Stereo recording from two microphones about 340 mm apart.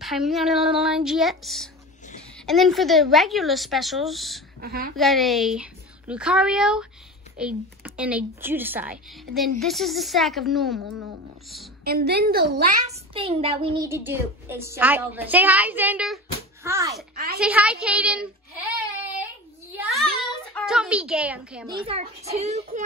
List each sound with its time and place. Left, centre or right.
0.0 s a child's voice: centre
4.6 s a woman's voice: right
4.9 s a child's voice: centre
11.8 s a woman's voice: right
13.1 s a child's voice: centre
17.1 s a woman's voice: right
17.4 s a child's voice: centre
19.8 s a sound: centre
21.8 s a woman's voice: centre